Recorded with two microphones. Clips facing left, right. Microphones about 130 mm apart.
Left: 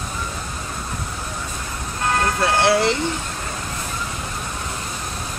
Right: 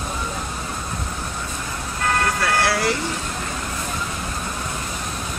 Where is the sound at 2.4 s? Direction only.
25° left (ahead or behind).